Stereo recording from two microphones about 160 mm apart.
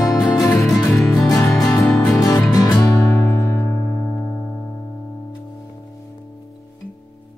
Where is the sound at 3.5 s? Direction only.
10° left (ahead or behind).